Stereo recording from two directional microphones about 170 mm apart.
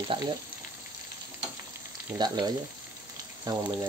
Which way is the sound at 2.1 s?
25° right (ahead or behind).